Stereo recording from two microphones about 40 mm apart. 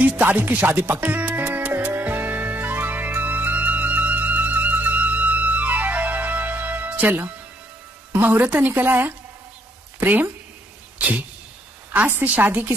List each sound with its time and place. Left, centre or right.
0.2 s music: right
0.7 s speech: right
2.0 s music: right
8.1 s a woman's voice: right
11.0 s a sound: right
11.9 s a woman's voice: right